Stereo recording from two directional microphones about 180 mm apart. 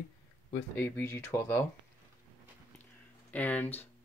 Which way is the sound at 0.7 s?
10° left (ahead or behind).